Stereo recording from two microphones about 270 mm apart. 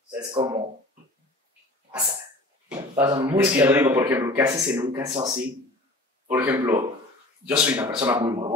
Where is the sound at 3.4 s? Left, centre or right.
Centre.